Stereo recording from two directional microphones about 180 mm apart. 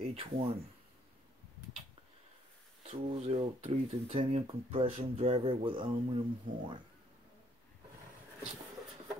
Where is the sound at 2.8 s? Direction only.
35° right (ahead or behind).